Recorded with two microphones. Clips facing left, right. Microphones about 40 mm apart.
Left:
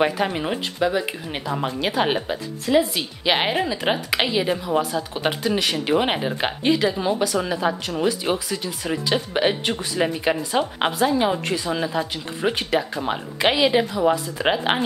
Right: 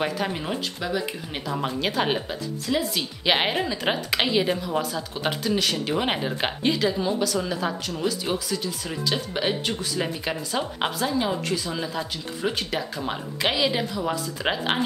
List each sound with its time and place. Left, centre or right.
0.0 s speech: left
3.0 s a woman's voice: centre
7.0 s speech: left